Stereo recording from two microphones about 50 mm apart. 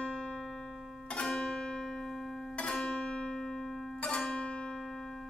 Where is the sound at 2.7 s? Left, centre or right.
Centre.